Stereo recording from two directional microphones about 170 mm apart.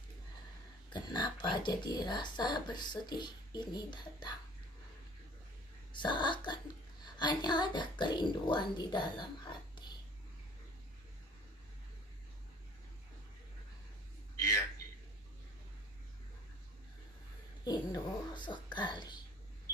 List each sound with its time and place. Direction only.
0.9 s speech: 25° left (ahead or behind)
5.9 s speech: 25° left (ahead or behind)
17.6 s a sound: 25° left (ahead or behind)